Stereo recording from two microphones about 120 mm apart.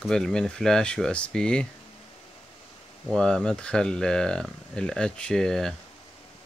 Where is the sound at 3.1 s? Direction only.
5° left (ahead or behind).